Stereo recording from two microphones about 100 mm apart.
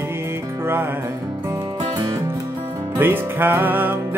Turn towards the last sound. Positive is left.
turn(degrees=-20)  # may be behind; listen again after turning